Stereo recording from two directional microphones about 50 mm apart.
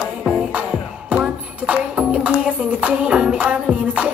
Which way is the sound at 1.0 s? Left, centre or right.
Right.